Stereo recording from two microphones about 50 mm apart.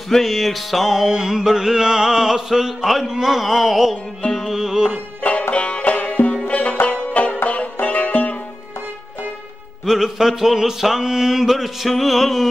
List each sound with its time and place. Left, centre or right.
0.1 s music: centre
3.9 s music: centre
5.5 s music: left
9.8 s music: centre